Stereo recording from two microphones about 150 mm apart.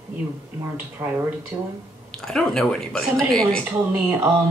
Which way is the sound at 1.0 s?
15° right (ahead or behind).